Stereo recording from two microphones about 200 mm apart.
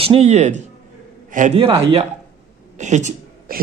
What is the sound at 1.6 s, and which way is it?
A man's voice, 30° right (ahead or behind).